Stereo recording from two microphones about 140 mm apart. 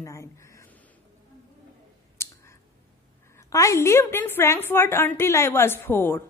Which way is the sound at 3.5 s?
20° left (ahead or behind).